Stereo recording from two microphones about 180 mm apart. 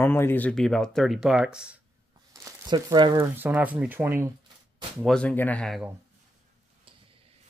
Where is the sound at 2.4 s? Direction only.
20° right (ahead or behind).